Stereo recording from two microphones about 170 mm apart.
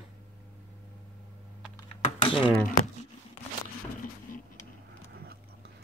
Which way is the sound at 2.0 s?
30° left (ahead or behind).